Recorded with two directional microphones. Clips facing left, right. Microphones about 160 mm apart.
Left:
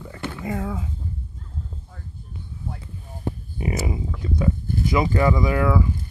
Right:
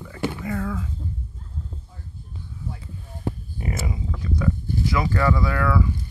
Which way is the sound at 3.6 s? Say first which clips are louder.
Left 4 dB; 20° left (ahead or behind).